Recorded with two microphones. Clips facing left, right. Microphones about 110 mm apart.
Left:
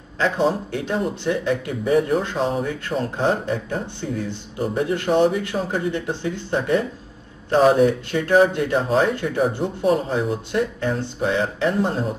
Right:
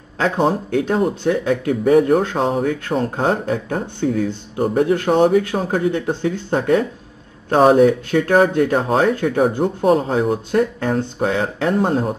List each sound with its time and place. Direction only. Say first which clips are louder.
0.2 s speech: right 2 dB; 50° right (ahead or behind)